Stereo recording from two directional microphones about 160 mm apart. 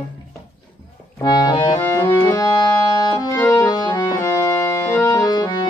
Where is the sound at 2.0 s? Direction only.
25° left (ahead or behind).